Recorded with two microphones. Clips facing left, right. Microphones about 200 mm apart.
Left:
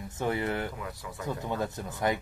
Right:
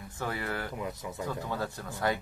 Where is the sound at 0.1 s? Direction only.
20° left (ahead or behind).